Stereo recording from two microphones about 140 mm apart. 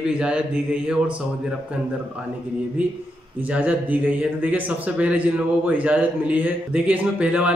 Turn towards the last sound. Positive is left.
turn(degrees=-10)  # may be behind; listen again after turning